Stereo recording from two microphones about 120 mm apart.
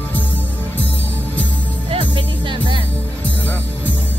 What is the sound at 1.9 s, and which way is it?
Music, 45° right (ahead or behind).